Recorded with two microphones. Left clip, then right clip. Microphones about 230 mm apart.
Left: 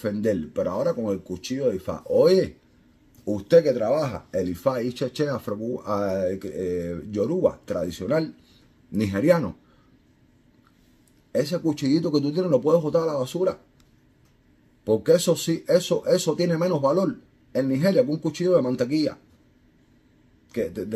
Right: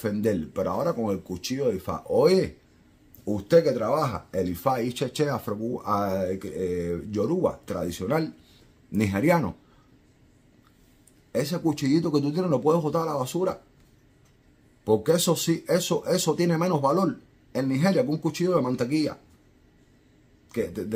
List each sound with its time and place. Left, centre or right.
0.0 s speech: centre
3.4 s speech: centre
11.8 s speech: centre
14.9 s speech: centre